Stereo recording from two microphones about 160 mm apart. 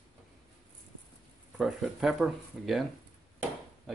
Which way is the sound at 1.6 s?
Centre (ahead or behind).